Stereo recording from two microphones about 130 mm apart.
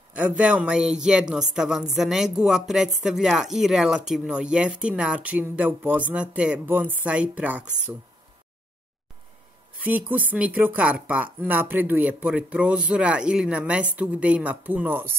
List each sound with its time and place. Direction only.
0.1 s a woman's voice: 10° right (ahead or behind)
9.8 s speech: 15° right (ahead or behind)